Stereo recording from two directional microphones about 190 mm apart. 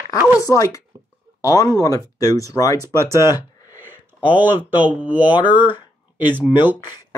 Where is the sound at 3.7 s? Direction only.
10° right (ahead or behind).